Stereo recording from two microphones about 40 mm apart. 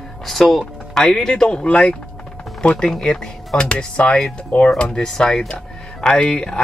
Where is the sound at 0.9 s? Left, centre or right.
Centre.